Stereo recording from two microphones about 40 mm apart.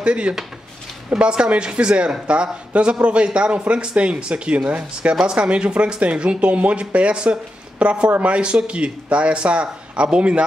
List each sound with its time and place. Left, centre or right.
0.0 s a man's voice: right